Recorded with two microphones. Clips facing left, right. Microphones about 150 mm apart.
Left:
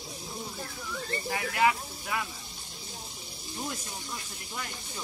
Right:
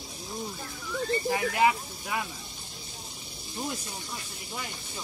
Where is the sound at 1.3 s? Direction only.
25° right (ahead or behind).